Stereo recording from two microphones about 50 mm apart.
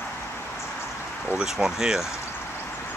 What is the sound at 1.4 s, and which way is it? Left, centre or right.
Speech, centre.